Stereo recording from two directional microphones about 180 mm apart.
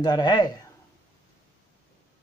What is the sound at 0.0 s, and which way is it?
Speech, 20° left (ahead or behind).